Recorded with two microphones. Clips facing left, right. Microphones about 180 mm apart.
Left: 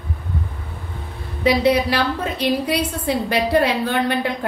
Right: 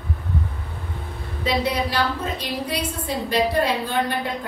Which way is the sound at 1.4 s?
70° left (ahead or behind).